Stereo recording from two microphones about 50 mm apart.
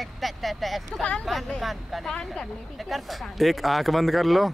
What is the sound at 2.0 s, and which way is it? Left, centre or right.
Speech, centre.